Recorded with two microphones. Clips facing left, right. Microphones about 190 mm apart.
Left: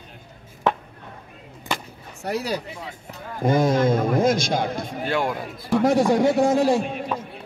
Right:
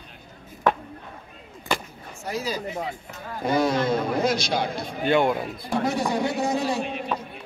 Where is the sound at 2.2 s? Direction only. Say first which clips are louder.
Left 3 dB; 65° left (ahead or behind).